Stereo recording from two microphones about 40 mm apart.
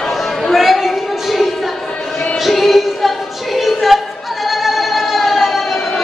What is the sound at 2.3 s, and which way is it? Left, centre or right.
Music, centre.